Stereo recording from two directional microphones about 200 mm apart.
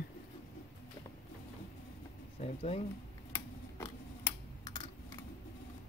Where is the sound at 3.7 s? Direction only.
15° left (ahead or behind).